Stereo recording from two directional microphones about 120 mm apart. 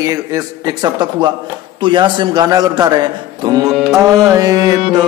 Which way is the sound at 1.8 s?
40° right (ahead or behind).